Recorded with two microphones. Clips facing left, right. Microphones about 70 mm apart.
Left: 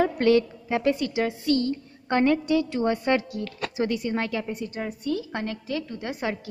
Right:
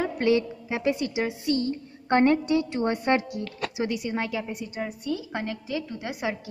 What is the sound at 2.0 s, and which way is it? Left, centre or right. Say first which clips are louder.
A woman's voice: right 1 dB; right.